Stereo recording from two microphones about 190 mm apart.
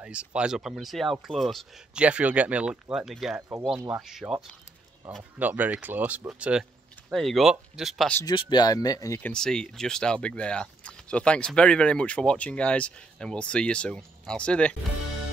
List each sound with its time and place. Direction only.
0.0 s speech: 5° right (ahead or behind)
5.4 s speech: 10° right (ahead or behind)
8.1 s speech: 15° left (ahead or behind)
9.3 s speech: 5° left (ahead or behind)